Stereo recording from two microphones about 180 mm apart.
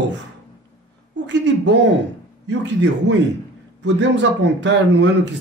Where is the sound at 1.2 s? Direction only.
80° right.